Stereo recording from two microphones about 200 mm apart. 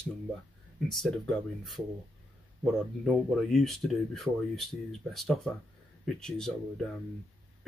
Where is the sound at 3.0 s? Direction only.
Centre (ahead or behind).